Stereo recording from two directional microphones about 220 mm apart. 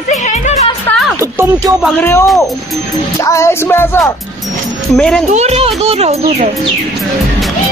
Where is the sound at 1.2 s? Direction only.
15° right (ahead or behind).